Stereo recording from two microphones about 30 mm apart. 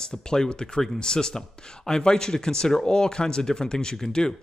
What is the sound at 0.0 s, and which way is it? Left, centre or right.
A man's voice, left.